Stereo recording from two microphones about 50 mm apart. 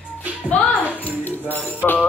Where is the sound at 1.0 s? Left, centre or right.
Left.